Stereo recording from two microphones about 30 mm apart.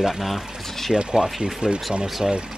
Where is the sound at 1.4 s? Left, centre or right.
Right.